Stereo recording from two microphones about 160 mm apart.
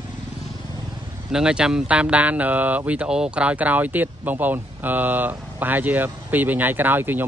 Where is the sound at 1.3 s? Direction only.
5° right (ahead or behind).